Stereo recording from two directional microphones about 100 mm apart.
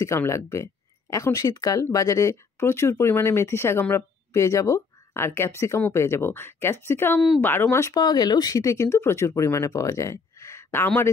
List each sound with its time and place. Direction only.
0.0 s speech: 30° left (ahead or behind)
7.9 s speech: 40° left (ahead or behind); by 10.9 s 25° left (ahead or behind)